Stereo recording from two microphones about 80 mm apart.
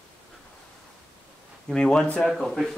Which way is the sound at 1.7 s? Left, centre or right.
Centre.